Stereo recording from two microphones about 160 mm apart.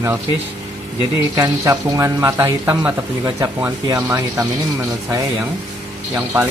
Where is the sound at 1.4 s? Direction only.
20° right (ahead or behind).